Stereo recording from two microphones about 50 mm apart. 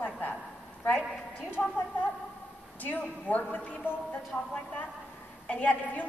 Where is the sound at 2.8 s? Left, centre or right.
Left.